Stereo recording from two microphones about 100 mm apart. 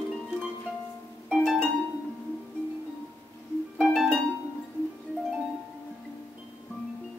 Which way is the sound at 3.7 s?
Centre (ahead or behind).